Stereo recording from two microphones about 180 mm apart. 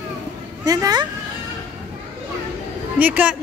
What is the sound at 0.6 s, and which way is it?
Speech, 20° right (ahead or behind).